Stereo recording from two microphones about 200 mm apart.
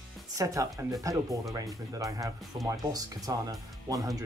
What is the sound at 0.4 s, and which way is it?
Speech, 15° right (ahead or behind).